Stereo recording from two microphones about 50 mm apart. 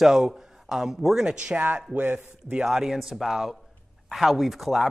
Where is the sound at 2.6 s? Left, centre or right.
Centre.